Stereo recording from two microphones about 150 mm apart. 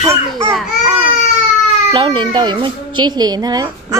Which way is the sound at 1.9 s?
30° right (ahead or behind).